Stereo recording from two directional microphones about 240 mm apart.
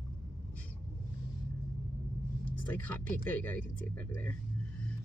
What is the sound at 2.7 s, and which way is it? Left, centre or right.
Speech, centre.